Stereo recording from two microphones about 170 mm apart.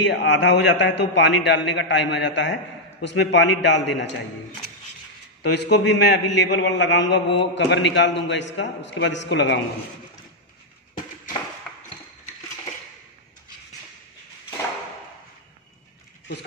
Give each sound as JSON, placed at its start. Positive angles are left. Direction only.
{"t": 0.0, "sound": "a man's voice", "side_deg": 90}
{"t": 5.4, "sound": "a man's voice", "side_deg": 80}